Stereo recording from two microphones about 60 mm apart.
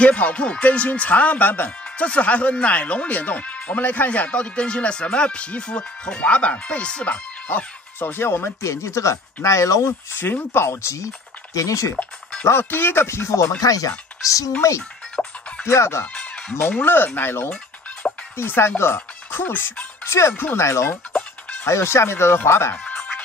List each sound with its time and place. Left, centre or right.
0.0 s speech: left
7.4 s speech: left
10.1 s speech: left
10.7 s speech: left
12.4 s speech: left
13.6 s speech: left
15.2 s music: centre
15.6 s speech: left
16.5 s speech: left
18.0 s music: centre
18.4 s speech: left
20.1 s speech: left